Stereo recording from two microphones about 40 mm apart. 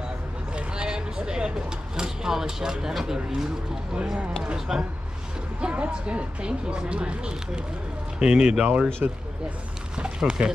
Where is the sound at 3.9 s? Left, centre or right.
Centre.